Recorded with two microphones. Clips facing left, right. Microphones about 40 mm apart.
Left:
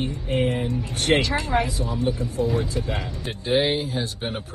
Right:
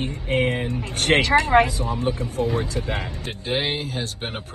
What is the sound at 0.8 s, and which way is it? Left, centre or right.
Speech, right.